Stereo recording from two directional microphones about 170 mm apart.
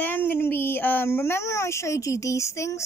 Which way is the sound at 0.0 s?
10° left (ahead or behind).